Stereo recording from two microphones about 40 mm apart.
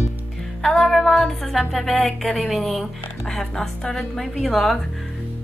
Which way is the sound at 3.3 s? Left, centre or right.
Centre.